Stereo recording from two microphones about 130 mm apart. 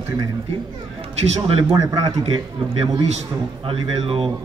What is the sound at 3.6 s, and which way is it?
Speech, 45° right (ahead or behind).